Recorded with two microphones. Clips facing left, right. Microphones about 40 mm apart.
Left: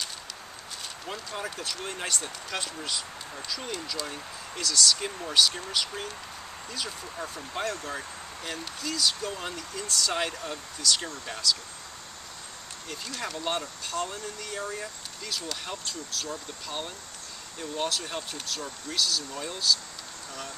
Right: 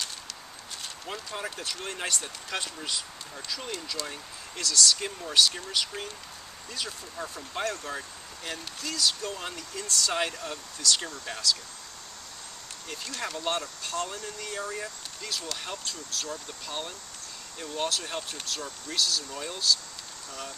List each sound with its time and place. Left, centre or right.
1.0 s speech: centre
12.8 s speech: centre